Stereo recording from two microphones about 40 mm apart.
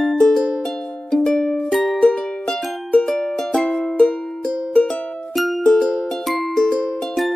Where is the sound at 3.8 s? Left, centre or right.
Left.